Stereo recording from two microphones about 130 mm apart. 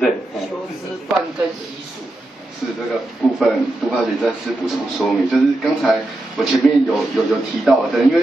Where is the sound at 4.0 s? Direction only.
5° right (ahead or behind).